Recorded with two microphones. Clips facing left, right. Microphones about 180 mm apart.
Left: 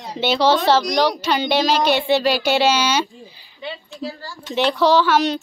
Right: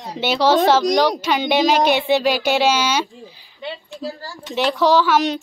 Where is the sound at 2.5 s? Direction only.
5° right (ahead or behind).